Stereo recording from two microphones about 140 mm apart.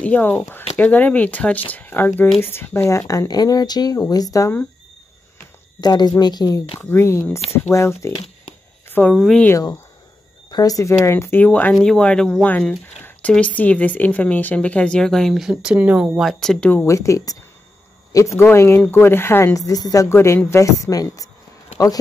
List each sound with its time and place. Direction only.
0.0 s speech: 10° left (ahead or behind)
5.8 s speech: 30° left (ahead or behind)
6.8 s speech: 15° left (ahead or behind)
8.8 s a sound: 15° left (ahead or behind)
9.1 s speech: 5° left (ahead or behind)
9.5 s speech: 25° left (ahead or behind); by 16.8 s 5° left (ahead or behind)
16.8 s speech: 20° left (ahead or behind)